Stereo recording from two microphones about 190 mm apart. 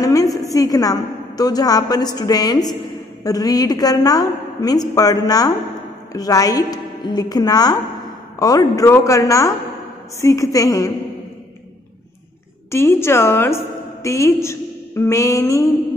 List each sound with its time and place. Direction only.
0.0 s a woman's voice: 20° left (ahead or behind)
12.7 s a woman's voice: 15° left (ahead or behind)